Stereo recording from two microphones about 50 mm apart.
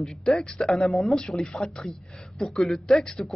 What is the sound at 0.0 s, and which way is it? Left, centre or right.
Speech, centre.